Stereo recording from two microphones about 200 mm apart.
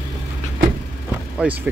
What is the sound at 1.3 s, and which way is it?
Speech, 10° right (ahead or behind).